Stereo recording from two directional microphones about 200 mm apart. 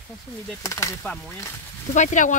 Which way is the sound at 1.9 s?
40° left (ahead or behind).